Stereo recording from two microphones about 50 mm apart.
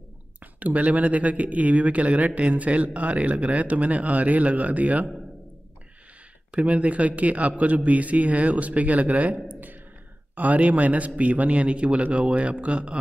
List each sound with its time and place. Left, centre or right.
0.4 s speech: right
6.5 s speech: right